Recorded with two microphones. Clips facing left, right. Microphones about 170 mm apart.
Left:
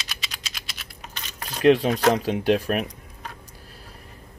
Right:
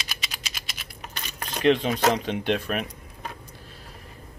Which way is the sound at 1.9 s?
Centre (ahead or behind).